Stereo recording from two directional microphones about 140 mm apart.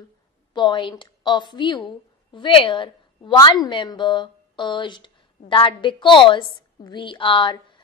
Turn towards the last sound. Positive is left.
turn(degrees=35)  # may be behind; listen again after turning